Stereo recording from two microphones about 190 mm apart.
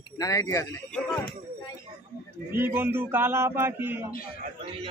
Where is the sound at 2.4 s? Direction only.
10° right (ahead or behind).